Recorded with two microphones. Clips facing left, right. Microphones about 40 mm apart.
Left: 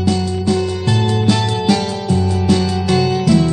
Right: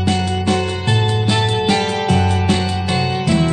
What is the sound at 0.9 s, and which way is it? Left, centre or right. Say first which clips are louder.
Music: left 3 dB; right.